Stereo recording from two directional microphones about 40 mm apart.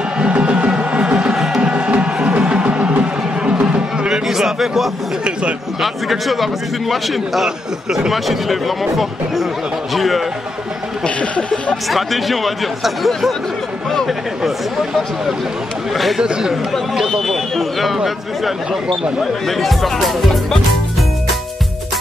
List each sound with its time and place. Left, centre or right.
0.2 s music: right
0.7 s a sound: right
1.1 s music: centre
1.7 s music: right
4.1 s a sound: centre
5.8 s speech: centre
11.1 s a sound: left
11.9 s speech: centre
16.2 s speech: centre
17.0 s speech: centre